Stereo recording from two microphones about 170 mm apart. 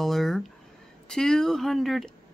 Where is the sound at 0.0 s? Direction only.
Centre (ahead or behind).